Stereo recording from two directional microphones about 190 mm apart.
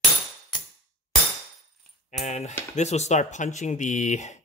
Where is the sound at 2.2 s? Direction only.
35° left (ahead or behind).